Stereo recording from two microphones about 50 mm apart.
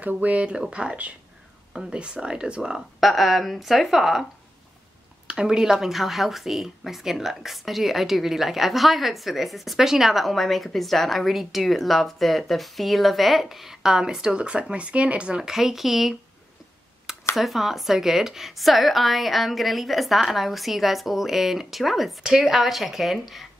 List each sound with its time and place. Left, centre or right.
0.0 s speech: right
1.7 s speech: centre
2.0 s speech: centre
3.0 s speech: centre
5.2 s speech: centre
15.5 s speech: centre
17.4 s speech: centre